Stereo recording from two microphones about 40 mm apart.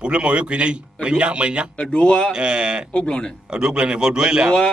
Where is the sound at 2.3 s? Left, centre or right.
Right.